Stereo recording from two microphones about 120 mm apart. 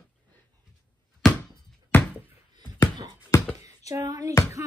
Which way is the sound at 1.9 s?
15° left (ahead or behind).